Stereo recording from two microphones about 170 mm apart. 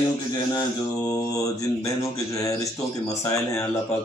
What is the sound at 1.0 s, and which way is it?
Speech, 20° left (ahead or behind).